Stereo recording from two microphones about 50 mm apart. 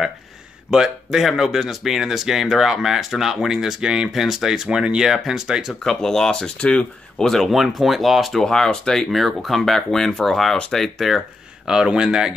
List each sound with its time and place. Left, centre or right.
0.7 s speech: centre
5.9 s speech: centre
6.6 s speech: left
7.2 s speech: centre
11.6 s speech: centre